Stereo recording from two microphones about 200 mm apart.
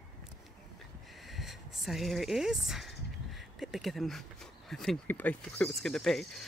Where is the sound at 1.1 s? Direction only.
Centre (ahead or behind).